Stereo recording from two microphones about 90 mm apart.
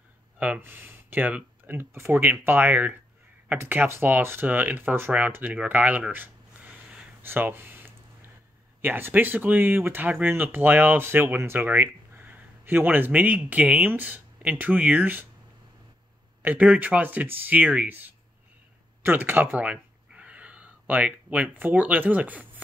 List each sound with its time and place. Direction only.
0.6 s speech: 25° right (ahead or behind)
7.2 s a sound: 25° right (ahead or behind)
8.8 s speech: 20° right (ahead or behind)
16.4 s speech: 15° right (ahead or behind)